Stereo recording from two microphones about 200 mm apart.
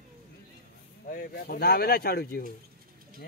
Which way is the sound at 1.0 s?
45° left (ahead or behind).